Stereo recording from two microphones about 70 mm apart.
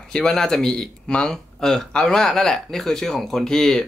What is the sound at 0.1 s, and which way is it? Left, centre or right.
Speech, centre.